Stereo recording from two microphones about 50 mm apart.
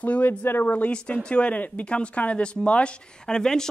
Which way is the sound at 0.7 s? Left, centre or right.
Left.